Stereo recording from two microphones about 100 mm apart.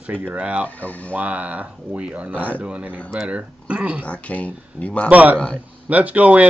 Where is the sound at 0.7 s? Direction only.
15° left (ahead or behind).